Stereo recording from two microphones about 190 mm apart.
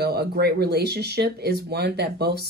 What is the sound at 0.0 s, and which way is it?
Speech, 55° right (ahead or behind).